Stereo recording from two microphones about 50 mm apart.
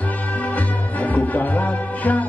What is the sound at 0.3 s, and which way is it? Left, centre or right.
Music, left.